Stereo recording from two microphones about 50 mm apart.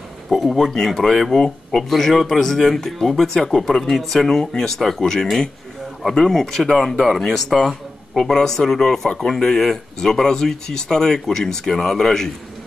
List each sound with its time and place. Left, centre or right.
0.3 s speech: centre